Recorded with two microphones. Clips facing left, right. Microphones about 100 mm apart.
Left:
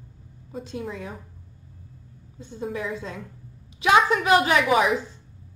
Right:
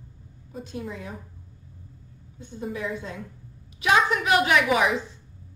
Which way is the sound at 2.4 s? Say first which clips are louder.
Left 2 dB; 30° left (ahead or behind).